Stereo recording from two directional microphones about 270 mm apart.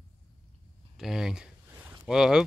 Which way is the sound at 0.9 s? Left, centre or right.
Centre.